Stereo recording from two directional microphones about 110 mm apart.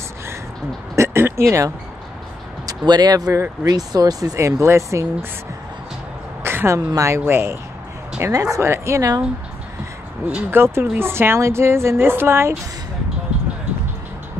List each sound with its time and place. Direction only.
0.9 s a sound: 25° right (ahead or behind)
2.6 s speech: 40° right (ahead or behind)
6.4 s a sound: 20° right (ahead or behind)
7.0 s a woman's voice: 25° right (ahead or behind)
8.2 s a woman's voice: 30° right (ahead or behind)
10.2 s a woman's voice: 15° right (ahead or behind)